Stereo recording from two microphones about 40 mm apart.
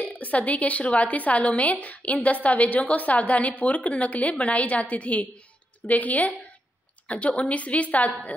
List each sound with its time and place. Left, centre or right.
0.0 s a woman's voice: left